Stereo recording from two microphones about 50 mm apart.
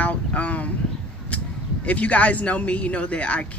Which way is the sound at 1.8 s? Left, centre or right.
Left.